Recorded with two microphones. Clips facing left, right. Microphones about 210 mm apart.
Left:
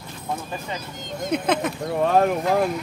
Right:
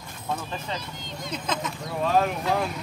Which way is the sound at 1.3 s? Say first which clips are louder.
Left 9 dB; 60° left (ahead or behind).